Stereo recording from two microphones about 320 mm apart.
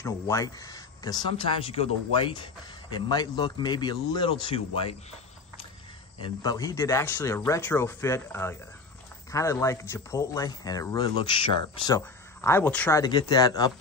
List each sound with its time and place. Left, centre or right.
0.0 s speech: centre
6.2 s speech: centre